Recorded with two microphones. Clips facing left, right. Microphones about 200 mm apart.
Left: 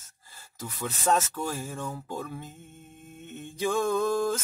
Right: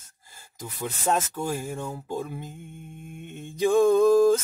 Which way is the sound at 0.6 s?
15° right (ahead or behind).